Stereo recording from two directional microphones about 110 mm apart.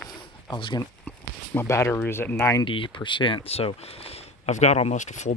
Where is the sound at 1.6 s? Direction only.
25° left (ahead or behind).